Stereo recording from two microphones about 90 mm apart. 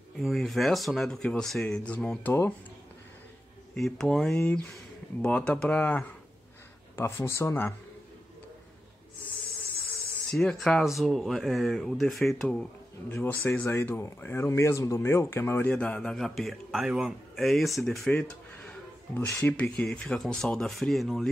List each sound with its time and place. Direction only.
0.2 s speech: centre (ahead or behind)
3.7 s speech: 5° left (ahead or behind)
7.0 s speech: 30° left (ahead or behind)
10.3 s speech: 5° left (ahead or behind)
13.1 s speech: 25° left (ahead or behind)
16.0 s speech: 5° left (ahead or behind)
18.1 s a sound: 15° left (ahead or behind)
19.1 s speech: 20° left (ahead or behind); by 21.3 s centre (ahead or behind)